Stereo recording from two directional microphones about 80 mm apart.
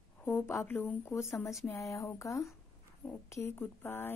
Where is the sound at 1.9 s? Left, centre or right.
Left.